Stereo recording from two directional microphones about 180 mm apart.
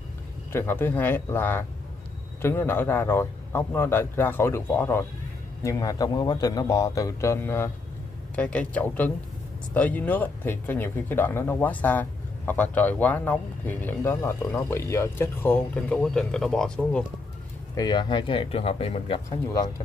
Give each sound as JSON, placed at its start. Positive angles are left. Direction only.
{"t": 0.5, "sound": "a man's voice", "side_deg": 10}
{"t": 17.7, "sound": "a man's voice", "side_deg": 25}